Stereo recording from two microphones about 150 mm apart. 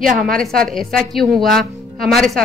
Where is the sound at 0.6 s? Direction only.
Centre (ahead or behind).